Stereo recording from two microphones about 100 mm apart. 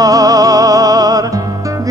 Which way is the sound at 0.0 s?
35° right (ahead or behind).